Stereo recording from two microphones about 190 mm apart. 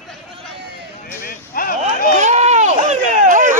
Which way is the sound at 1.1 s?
50° left (ahead or behind).